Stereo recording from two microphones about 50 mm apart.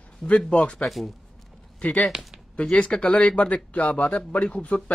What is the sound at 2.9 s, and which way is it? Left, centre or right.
Speech, centre.